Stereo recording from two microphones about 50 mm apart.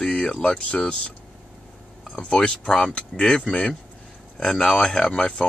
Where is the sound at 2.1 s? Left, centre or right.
Centre.